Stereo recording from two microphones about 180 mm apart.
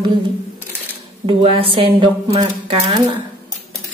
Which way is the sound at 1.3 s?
30° right (ahead or behind).